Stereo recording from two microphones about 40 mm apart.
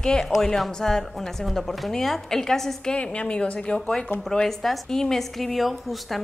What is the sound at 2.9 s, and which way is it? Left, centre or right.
Speech, left.